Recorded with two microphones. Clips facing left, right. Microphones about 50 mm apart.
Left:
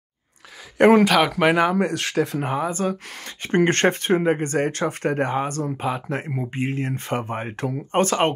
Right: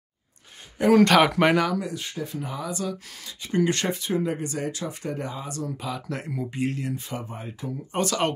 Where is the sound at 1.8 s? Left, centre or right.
Left.